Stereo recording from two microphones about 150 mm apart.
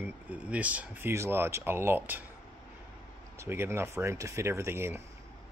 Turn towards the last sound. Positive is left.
turn(degrees=-15)  # may be behind; listen again after turning